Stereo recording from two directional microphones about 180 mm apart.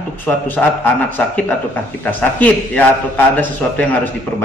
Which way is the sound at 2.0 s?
10° left (ahead or behind).